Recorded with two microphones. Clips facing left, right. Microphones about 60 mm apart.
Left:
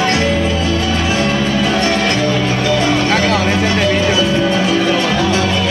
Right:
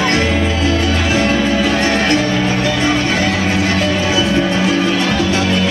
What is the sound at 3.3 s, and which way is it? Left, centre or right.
Music, left.